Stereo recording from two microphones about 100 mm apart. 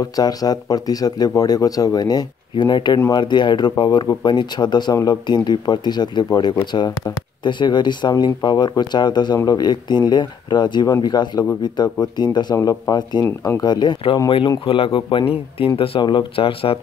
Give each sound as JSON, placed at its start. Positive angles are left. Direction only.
{"t": 0.0, "sound": "speech", "side_deg": 40}
{"t": 14.6, "sound": "speech", "side_deg": 65}
{"t": 15.6, "sound": "speech", "side_deg": 65}